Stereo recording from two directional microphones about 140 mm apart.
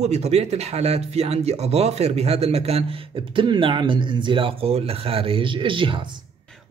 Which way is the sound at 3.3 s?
40° right (ahead or behind).